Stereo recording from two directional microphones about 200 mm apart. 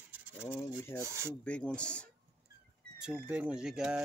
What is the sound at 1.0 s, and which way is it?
Speech, 15° right (ahead or behind).